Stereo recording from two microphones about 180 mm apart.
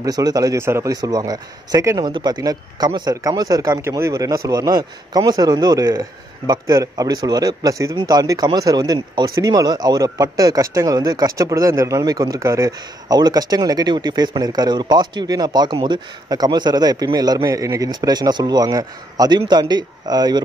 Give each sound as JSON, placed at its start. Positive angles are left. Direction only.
{"t": 0.0, "sound": "speech", "side_deg": -20}